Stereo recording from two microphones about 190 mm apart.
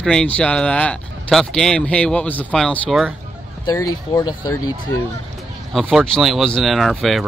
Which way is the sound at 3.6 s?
20° left (ahead or behind).